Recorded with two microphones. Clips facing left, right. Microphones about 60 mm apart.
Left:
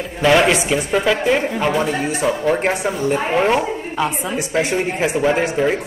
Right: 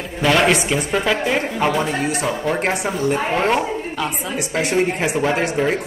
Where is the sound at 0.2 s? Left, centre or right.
Centre.